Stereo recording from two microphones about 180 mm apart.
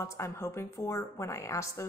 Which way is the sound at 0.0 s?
15° left (ahead or behind).